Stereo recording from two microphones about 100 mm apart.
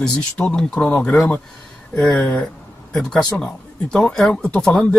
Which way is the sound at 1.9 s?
5° left (ahead or behind).